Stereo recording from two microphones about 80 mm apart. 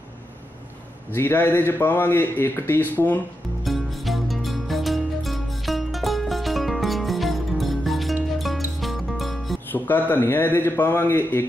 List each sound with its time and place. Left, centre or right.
1.1 s a man's voice: left
3.6 s music: centre
9.7 s a man's voice: left